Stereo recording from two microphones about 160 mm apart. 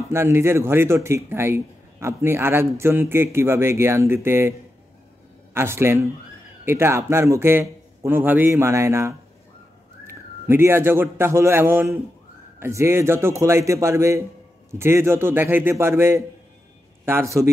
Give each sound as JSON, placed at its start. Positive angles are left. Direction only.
{"t": 0.1, "sound": "a man's voice", "side_deg": -15}